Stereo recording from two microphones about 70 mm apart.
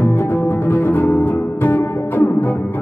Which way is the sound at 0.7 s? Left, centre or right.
Left.